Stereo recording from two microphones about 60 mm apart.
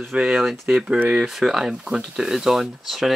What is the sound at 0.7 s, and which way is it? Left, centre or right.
Speech, centre.